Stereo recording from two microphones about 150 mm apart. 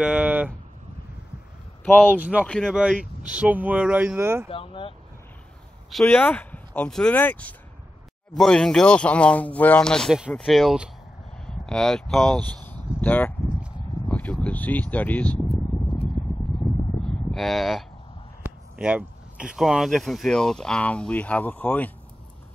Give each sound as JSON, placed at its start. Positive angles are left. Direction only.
{"t": 0.0, "sound": "a sound", "side_deg": -5}
{"t": 2.1, "sound": "speech", "side_deg": -10}
{"t": 2.4, "sound": "speech", "side_deg": 5}
{"t": 2.7, "sound": "speech", "side_deg": -5}
{"t": 4.5, "sound": "speech", "side_deg": 35}
{"t": 6.0, "sound": "speech", "side_deg": 10}
{"t": 14.0, "sound": "a sound", "side_deg": 10}
{"t": 17.3, "sound": "cattle", "side_deg": 0}
{"t": 18.4, "sound": "speech", "side_deg": -10}